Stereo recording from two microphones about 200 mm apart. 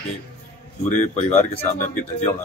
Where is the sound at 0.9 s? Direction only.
40° left (ahead or behind).